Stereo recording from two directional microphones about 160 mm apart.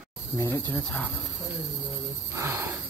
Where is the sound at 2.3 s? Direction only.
15° right (ahead or behind).